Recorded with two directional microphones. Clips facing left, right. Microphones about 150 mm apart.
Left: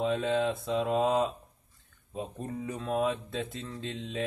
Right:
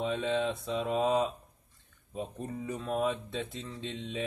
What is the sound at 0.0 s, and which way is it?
Speech, centre (ahead or behind).